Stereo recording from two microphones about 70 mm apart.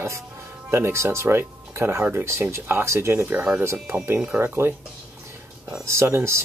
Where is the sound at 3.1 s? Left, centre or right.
Right.